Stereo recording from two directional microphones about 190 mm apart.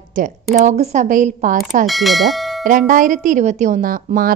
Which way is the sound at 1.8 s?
Centre (ahead or behind).